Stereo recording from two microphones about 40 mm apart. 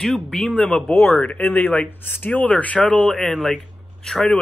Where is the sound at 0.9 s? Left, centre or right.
Left.